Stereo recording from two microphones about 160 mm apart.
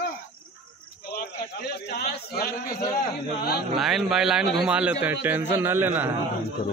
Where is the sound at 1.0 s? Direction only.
70° left (ahead or behind).